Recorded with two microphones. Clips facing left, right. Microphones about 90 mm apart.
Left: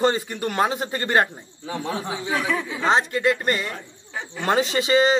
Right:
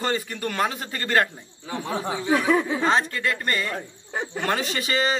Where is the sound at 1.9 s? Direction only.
35° right (ahead or behind).